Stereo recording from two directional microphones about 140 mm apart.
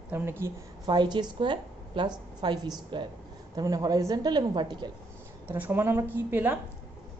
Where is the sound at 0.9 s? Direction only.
30° right (ahead or behind).